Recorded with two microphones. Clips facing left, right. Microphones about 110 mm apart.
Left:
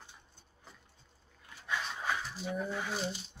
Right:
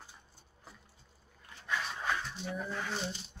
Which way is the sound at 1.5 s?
5° left (ahead or behind).